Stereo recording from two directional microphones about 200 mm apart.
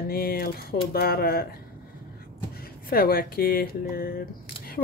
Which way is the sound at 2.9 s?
50° left (ahead or behind).